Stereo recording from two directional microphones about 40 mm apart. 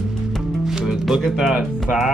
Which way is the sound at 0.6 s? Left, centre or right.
Centre.